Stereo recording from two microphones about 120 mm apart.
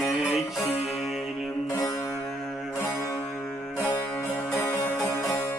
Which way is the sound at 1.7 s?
30° left (ahead or behind).